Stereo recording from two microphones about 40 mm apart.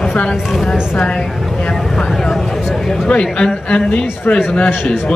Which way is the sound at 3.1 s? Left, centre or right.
Left.